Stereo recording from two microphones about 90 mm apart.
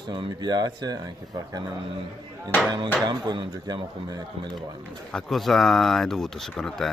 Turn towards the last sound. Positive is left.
turn(degrees=5)  # may be behind; listen again after turning